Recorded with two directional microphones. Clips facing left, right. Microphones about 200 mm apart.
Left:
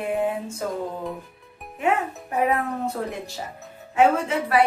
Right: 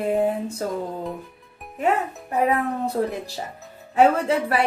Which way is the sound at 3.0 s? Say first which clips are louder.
Right 5 dB; 30° right (ahead or behind).